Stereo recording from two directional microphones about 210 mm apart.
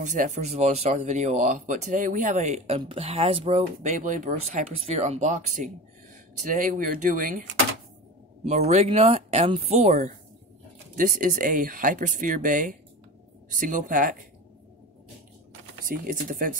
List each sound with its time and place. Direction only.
0.0 s speech: 35° right (ahead or behind)
8.5 s speech: 35° right (ahead or behind)
15.9 s speech: 40° right (ahead or behind)